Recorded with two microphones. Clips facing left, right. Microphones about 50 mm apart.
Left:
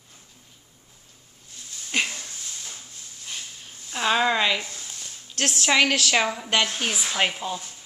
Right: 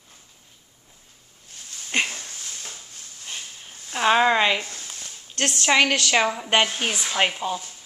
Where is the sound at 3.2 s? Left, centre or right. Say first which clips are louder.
Right 1 dB; right.